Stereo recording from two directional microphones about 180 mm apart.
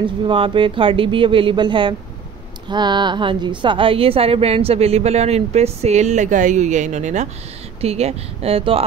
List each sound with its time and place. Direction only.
0.0 s a woman's voice: 30° right (ahead or behind)